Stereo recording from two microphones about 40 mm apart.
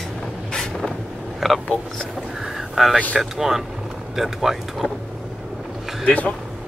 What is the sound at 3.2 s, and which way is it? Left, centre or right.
Speech, centre.